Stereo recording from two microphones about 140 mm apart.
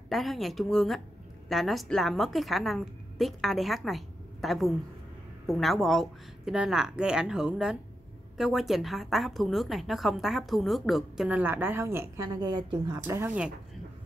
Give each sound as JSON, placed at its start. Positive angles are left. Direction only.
{"t": 0.1, "sound": "a woman's voice", "side_deg": 0}
{"t": 12.4, "sound": "a woman's voice", "side_deg": -30}
{"t": 13.0, "sound": "speech", "side_deg": -15}